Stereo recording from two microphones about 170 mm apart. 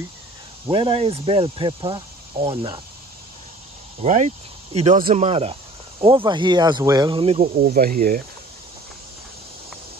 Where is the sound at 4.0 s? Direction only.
45° right (ahead or behind).